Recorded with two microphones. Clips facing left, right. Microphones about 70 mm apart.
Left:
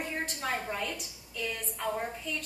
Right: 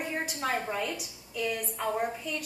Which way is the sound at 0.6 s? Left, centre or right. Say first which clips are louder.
Right 3 dB; centre.